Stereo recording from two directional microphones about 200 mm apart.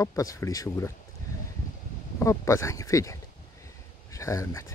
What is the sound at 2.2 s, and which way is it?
Speech, 15° left (ahead or behind).